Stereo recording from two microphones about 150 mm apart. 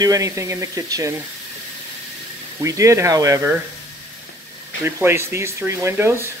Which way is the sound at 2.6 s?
20° right (ahead or behind).